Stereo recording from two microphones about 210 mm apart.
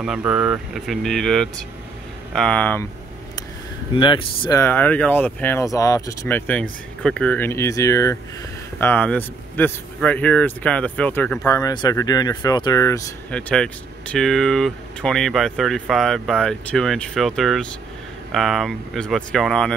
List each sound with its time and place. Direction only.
0.0 s speech: 5° right (ahead or behind)
3.9 s speech: 25° left (ahead or behind)
13.3 s speech: 5° left (ahead or behind)